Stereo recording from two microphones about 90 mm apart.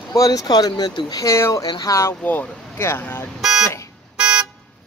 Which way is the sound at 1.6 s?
50° left (ahead or behind).